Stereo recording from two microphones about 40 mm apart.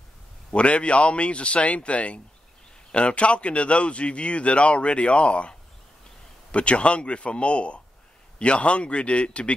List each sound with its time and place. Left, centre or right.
0.5 s speech: left